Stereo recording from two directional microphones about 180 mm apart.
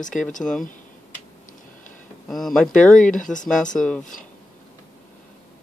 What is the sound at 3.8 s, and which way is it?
Speech, centre (ahead or behind).